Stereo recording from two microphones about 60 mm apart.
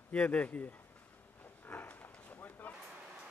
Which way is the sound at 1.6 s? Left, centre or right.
Left.